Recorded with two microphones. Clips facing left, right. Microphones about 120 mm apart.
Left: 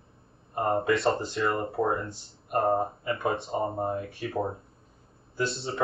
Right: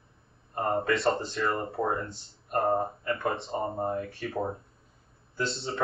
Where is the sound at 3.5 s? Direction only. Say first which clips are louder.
Left 1 dB; 15° left (ahead or behind).